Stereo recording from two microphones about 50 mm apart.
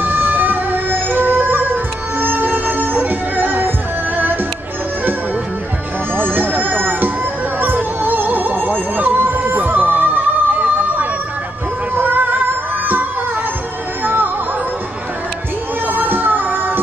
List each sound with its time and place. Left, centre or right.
0.0 s music: right
6.1 s music: right
14.0 s music: right
15.9 s music: right